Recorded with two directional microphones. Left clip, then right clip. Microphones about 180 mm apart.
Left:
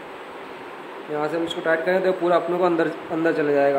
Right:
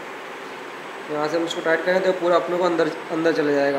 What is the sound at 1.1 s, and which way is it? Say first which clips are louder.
Speech: right 1 dB; 25° left (ahead or behind).